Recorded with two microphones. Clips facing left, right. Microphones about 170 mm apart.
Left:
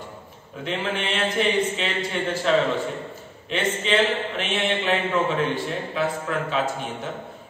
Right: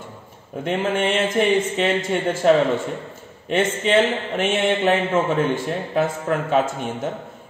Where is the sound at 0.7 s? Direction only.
45° right (ahead or behind).